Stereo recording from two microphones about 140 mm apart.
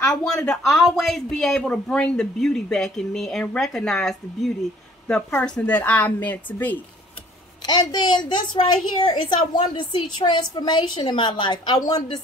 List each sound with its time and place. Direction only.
0.0 s speech: 5° left (ahead or behind)
7.6 s a woman's voice: 30° left (ahead or behind)